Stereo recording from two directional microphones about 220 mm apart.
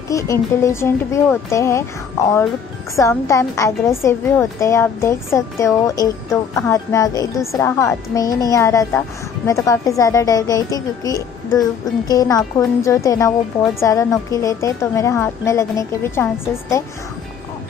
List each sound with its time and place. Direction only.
0.1 s a woman's voice: 15° left (ahead or behind)
3.0 s a woman's voice: 15° left (ahead or behind)